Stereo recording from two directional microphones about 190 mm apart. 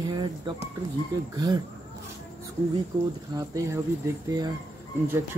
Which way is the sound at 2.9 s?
20° right (ahead or behind).